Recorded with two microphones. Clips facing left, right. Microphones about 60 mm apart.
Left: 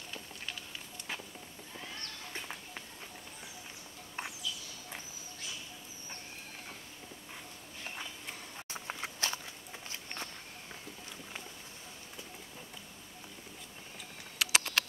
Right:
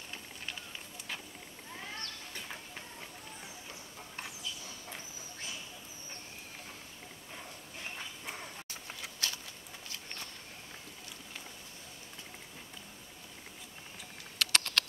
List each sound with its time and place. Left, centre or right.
4.2 s bird: left
8.6 s a sound: left
14.4 s patter: centre